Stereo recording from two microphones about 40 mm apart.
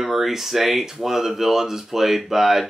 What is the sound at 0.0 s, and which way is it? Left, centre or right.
Speech, centre.